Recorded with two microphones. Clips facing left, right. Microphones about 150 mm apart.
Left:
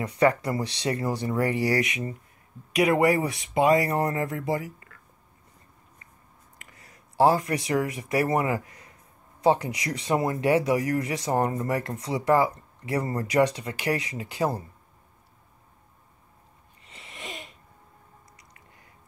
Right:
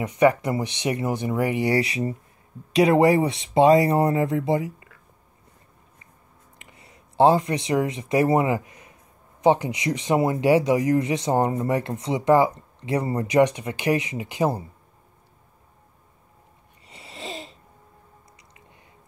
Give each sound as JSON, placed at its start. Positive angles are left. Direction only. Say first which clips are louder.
{"t": 0.0, "sound": "speech", "louder": "right 3 dB", "side_deg": -20}
{"t": 6.6, "sound": "speech", "louder": "right 3 dB", "side_deg": -25}
{"t": 16.8, "sound": "a sound", "louder": "right 5 dB", "side_deg": -25}